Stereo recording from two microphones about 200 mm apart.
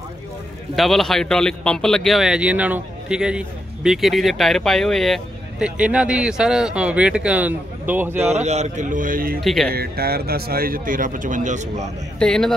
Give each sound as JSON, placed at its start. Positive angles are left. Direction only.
{"t": 0.7, "sound": "a man's voice", "side_deg": 0}
{"t": 8.3, "sound": "speech", "side_deg": -35}
{"t": 9.4, "sound": "a man's voice", "side_deg": 0}
{"t": 9.7, "sound": "speech", "side_deg": -50}
{"t": 12.2, "sound": "a man's voice", "side_deg": 5}